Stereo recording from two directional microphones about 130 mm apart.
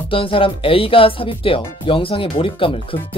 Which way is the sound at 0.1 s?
45° left (ahead or behind).